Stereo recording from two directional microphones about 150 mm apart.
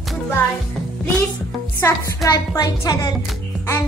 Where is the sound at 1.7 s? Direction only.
20° left (ahead or behind).